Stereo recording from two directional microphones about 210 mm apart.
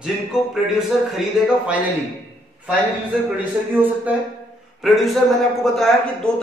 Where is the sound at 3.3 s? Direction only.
10° right (ahead or behind).